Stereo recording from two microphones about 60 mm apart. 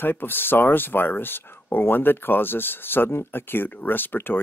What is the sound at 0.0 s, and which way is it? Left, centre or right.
Speech, left.